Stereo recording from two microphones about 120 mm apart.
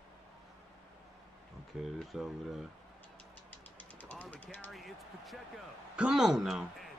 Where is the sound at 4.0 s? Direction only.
10° left (ahead or behind).